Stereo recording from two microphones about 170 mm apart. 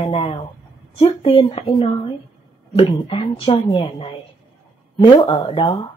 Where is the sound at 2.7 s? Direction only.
30° left (ahead or behind).